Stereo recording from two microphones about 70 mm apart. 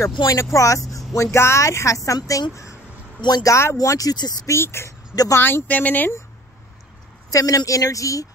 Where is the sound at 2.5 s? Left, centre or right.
Left.